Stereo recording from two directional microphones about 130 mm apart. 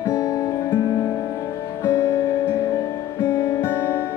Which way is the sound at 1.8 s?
20° left (ahead or behind).